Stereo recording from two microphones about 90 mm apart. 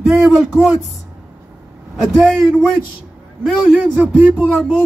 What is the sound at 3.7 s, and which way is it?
Speech, 15° right (ahead or behind).